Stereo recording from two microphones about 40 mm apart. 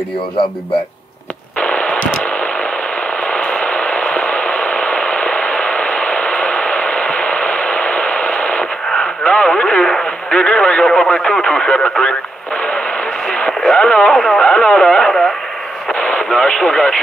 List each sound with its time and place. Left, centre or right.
1.6 s radio: left
3.3 s a sound: left
8.9 s radio: left
10.4 s radio: left
13.3 s radio: left
14.1 s a sound: centre
14.4 s a sound: left
15.9 s radio: left
16.3 s radio: centre